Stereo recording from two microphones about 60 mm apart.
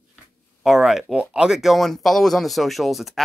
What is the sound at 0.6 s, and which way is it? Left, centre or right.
Speech, centre.